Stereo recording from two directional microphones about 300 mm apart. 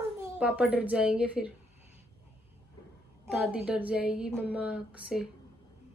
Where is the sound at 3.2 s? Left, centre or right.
Centre.